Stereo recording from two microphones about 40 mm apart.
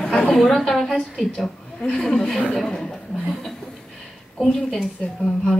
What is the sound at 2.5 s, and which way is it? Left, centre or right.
Speech, centre.